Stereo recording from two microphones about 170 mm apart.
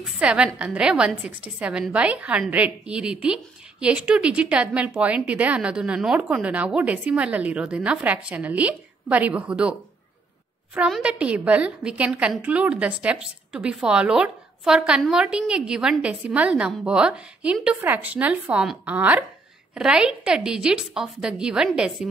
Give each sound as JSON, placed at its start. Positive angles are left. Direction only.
{"t": 0.0, "sound": "a woman's voice", "side_deg": -5}